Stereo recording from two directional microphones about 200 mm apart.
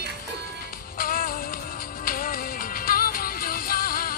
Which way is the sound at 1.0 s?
45° left (ahead or behind).